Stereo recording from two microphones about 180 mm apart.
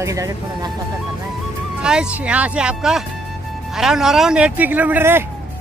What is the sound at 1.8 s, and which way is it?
Speech, 5° right (ahead or behind).